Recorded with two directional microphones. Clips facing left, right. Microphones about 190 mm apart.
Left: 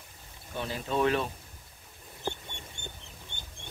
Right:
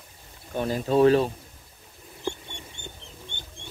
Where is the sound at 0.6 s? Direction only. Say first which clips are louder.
Right 9 dB; 45° right (ahead or behind).